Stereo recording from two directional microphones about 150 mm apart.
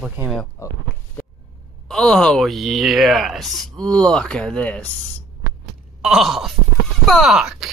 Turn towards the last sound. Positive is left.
turn(degrees=0)  # may be behind; listen again after turning